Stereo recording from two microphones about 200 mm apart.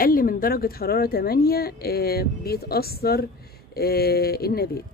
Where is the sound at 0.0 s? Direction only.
45° left (ahead or behind).